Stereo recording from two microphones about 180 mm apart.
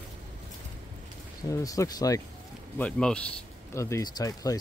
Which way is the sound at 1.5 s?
20° left (ahead or behind).